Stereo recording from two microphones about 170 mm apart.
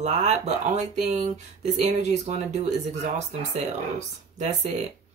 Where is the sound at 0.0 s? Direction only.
45° right (ahead or behind).